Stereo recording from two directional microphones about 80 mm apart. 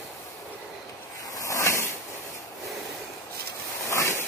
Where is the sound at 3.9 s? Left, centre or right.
Left.